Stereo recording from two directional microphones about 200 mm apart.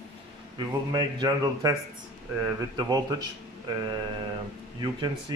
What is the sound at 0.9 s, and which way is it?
Speech, 20° right (ahead or behind).